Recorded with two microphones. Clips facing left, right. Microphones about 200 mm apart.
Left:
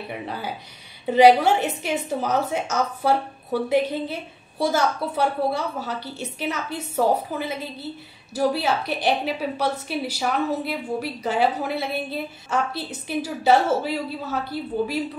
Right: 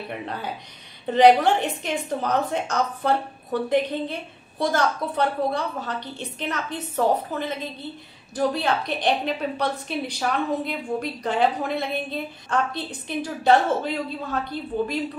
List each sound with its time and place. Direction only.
0.1 s a woman's voice: 5° left (ahead or behind)